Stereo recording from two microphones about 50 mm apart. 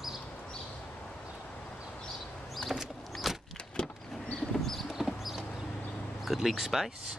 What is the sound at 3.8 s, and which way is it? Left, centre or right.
Power windows, centre.